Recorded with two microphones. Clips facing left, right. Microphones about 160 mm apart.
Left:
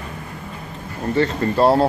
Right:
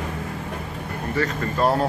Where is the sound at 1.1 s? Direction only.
30° left (ahead or behind).